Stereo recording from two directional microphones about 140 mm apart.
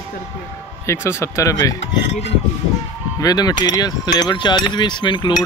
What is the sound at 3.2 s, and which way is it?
Speech, 25° left (ahead or behind).